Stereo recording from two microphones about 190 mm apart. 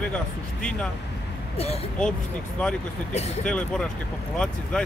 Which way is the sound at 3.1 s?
35° left (ahead or behind).